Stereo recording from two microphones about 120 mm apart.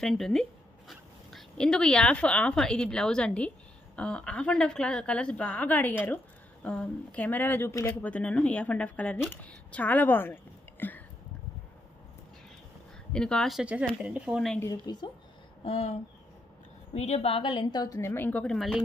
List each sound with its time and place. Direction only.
0.0 s speech: centre (ahead or behind); by 8.1 s 20° left (ahead or behind)
8.1 s speech: 10° left (ahead or behind)
13.1 s speech: 5° left (ahead or behind); by 14.4 s 10° right (ahead or behind)
14.6 s speech: 35° left (ahead or behind)
15.6 s a woman's voice: 55° left (ahead or behind); by 18.1 s 30° left (ahead or behind)
18.1 s speech: 15° left (ahead or behind)